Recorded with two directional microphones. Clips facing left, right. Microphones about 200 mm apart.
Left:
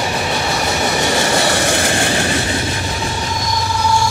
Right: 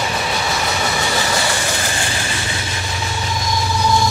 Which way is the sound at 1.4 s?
60° left (ahead or behind).